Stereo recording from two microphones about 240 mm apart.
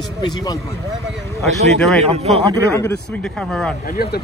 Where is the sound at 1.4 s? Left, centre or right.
Centre.